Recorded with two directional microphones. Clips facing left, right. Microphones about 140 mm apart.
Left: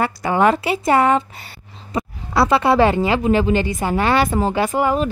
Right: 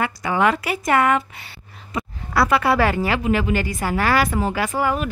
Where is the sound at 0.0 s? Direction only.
35° left (ahead or behind).